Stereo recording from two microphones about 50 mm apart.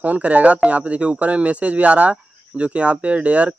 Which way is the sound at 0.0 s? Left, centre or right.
Right.